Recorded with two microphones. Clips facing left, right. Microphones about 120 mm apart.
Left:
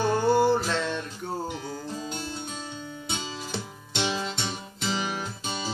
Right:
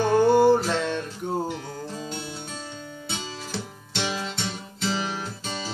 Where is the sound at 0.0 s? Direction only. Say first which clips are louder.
Right 4 dB; centre (ahead or behind).